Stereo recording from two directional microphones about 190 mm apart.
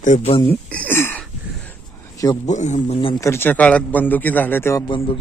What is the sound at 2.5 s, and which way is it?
Speech, 40° left (ahead or behind).